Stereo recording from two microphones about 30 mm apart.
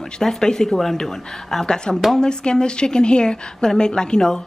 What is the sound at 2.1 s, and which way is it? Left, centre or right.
A woman's voice, left.